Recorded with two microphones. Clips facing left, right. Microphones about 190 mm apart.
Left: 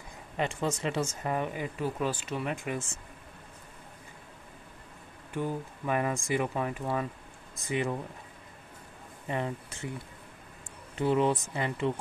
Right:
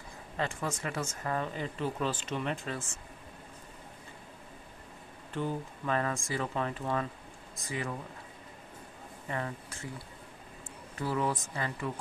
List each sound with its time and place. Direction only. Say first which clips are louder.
0.4 s speech: left 4 dB; 20° left (ahead or behind)
5.3 s speech: left 1 dB; 10° left (ahead or behind)
7.6 s speech: left 6 dB; 25° left (ahead or behind)
9.3 s speech: left 4 dB; 20° left (ahead or behind)
11.0 s speech: left 6 dB; 20° left (ahead or behind)